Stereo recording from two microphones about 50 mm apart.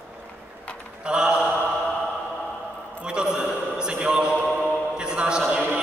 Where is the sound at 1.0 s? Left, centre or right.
Centre.